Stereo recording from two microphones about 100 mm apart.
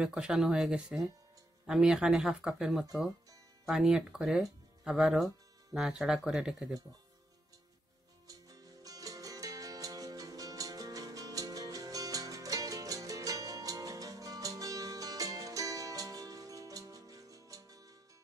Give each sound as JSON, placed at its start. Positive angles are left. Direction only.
{"t": 0.0, "sound": "speech", "side_deg": -5}
{"t": 8.3, "sound": "music", "side_deg": -35}